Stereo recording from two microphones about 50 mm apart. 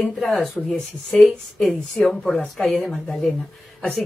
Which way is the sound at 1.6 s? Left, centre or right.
Left.